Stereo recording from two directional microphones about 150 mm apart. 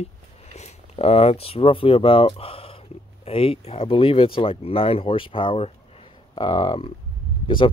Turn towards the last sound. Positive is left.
turn(degrees=35)  # may be behind; listen again after turning